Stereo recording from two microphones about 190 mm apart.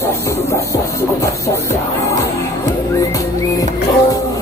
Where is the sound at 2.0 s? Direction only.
15° left (ahead or behind).